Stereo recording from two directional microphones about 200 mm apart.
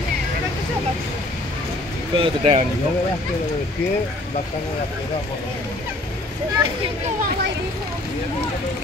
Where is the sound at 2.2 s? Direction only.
30° right (ahead or behind).